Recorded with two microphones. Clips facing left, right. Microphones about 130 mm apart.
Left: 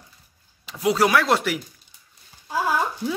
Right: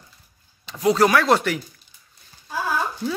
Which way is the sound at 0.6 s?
5° left (ahead or behind).